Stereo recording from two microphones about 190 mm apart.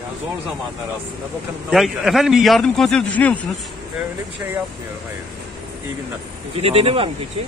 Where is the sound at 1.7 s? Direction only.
Centre (ahead or behind).